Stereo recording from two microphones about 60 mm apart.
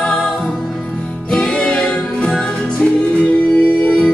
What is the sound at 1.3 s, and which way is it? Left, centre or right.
Music, centre.